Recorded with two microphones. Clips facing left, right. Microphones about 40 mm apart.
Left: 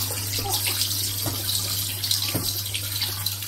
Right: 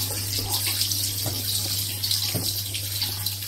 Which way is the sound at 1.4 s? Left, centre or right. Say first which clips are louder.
Left 1 dB; left.